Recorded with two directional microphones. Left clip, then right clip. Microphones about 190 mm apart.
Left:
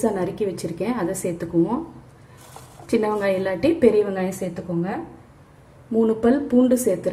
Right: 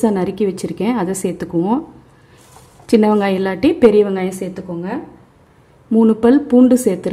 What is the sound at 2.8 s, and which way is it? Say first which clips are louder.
A woman's voice: right 7 dB; 60° right (ahead or behind).